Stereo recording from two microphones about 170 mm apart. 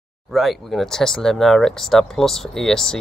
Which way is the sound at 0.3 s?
Centre (ahead or behind).